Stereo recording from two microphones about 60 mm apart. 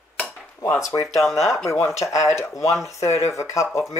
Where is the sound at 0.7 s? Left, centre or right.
Left.